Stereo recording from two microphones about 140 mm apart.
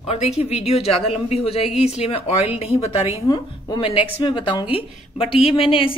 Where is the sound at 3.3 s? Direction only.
30° left (ahead or behind).